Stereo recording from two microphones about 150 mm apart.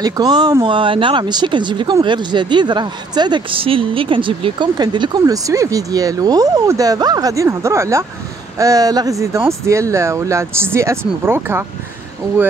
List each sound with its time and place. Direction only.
0.0 s speech: 25° right (ahead or behind)